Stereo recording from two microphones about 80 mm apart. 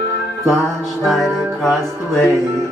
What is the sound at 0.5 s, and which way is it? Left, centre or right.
Music, centre.